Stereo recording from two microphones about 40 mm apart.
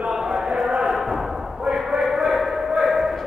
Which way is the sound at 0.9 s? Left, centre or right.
Centre.